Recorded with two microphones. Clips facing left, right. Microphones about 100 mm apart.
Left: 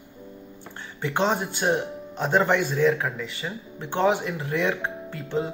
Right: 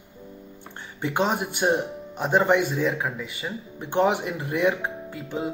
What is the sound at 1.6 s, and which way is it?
Speech, 30° right (ahead or behind).